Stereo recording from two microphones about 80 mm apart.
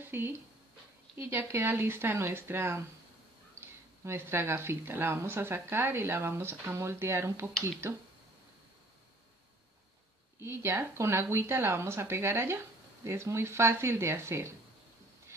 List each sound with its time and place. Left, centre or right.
0.0 s a sound: right
1.1 s speech: right
4.0 s speech: right
10.4 s speech: right